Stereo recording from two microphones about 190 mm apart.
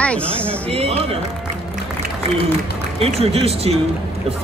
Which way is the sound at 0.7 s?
30° right (ahead or behind).